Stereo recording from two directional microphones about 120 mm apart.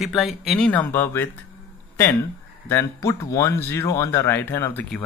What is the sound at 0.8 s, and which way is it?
Speech, 20° left (ahead or behind).